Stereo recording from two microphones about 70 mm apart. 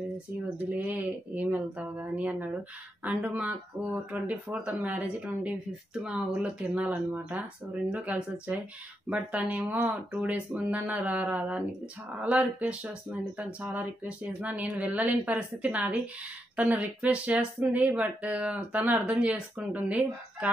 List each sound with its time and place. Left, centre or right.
0.7 s speech: right